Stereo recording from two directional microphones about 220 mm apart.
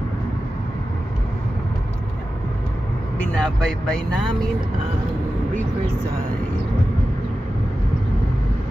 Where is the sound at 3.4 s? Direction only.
5° left (ahead or behind).